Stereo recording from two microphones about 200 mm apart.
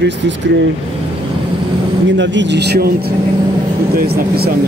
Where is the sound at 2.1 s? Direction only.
65° right (ahead or behind).